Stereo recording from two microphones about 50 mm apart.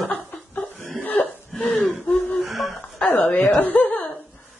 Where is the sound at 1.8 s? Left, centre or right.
Left.